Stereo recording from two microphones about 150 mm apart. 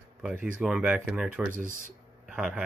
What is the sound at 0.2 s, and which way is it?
A man's voice, 5° right (ahead or behind).